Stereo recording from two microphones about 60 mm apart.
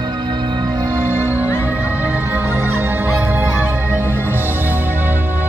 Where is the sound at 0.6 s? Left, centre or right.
Right.